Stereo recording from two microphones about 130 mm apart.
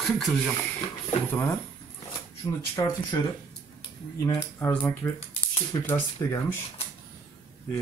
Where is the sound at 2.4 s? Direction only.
30° left (ahead or behind).